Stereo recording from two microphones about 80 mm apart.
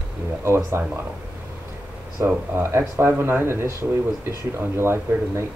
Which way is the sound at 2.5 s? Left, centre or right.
Right.